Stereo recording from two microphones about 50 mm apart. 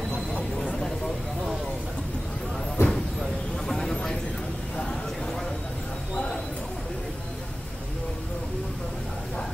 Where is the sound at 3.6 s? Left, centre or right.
Centre.